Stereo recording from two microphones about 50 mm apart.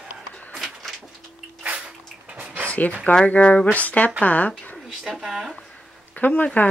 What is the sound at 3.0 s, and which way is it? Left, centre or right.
Speech, centre.